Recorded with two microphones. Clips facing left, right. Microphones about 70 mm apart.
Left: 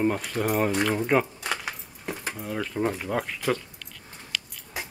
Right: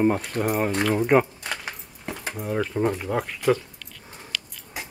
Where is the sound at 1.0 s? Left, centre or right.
Centre.